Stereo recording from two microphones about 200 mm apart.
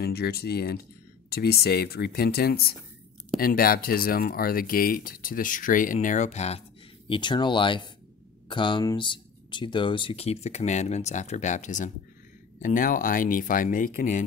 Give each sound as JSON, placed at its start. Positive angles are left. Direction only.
{"t": 0.0, "sound": "speech", "side_deg": 50}
{"t": 7.1, "sound": "speech", "side_deg": 25}